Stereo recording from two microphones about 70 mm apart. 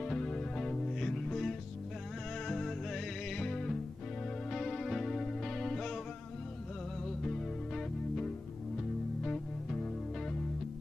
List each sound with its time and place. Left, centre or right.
0.0 s music: centre
7.1 s music: centre